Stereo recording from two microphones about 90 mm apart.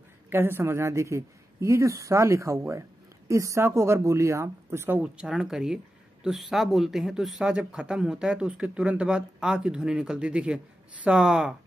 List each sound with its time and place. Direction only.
0.3 s speech: 25° right (ahead or behind)
5.0 s speech: 10° right (ahead or behind)